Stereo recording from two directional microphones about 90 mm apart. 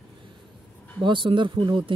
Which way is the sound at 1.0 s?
65° right (ahead or behind).